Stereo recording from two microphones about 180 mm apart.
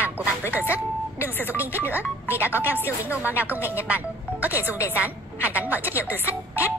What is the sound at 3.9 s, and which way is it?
Music, 10° right (ahead or behind).